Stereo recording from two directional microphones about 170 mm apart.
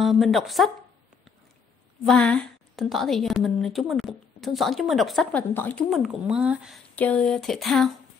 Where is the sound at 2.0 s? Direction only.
Centre (ahead or behind).